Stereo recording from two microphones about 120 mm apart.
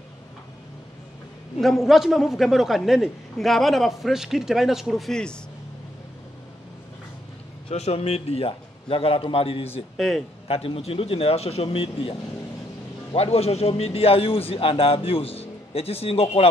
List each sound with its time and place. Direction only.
1.6 s a man's voice: centre (ahead or behind)
7.7 s a man's voice: 65° left (ahead or behind)
9.9 s speech: 5° left (ahead or behind)
10.5 s a man's voice: 55° left (ahead or behind)